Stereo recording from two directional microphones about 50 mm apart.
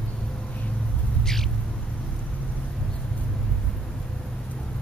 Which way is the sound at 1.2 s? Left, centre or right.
Centre.